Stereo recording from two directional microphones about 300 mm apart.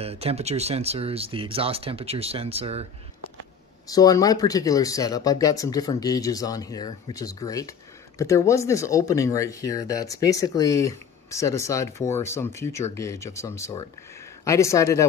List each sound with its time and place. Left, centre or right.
0.0 s speech: centre
3.8 s speech: centre